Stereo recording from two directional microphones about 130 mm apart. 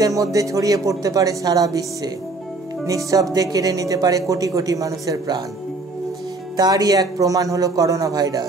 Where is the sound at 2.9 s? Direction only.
25° right (ahead or behind).